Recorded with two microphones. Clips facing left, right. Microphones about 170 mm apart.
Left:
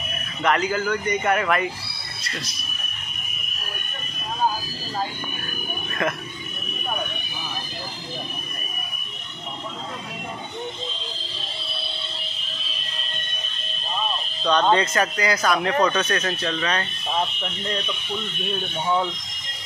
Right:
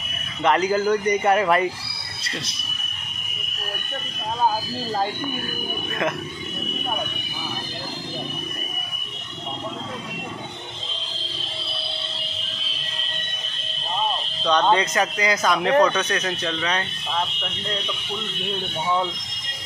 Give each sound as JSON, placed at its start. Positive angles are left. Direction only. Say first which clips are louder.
{"t": 0.4, "sound": "speech", "louder": "right 3 dB", "side_deg": -30}
{"t": 14.7, "sound": "speech", "louder": "even", "side_deg": -15}
{"t": 17.1, "sound": "speech", "louder": "left 2 dB", "side_deg": 10}